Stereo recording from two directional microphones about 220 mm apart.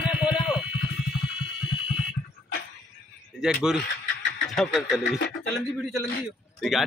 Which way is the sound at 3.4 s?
Centre (ahead or behind).